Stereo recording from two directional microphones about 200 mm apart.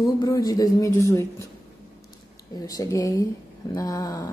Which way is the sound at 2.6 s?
15° left (ahead or behind).